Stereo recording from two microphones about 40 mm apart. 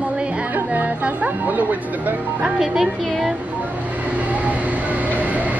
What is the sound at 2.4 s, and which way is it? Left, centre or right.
Speech, centre.